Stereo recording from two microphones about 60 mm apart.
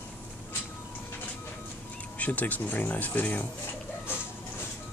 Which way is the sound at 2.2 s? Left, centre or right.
Left.